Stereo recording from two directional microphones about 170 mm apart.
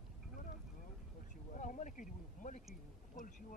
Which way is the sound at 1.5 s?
50° left (ahead or behind).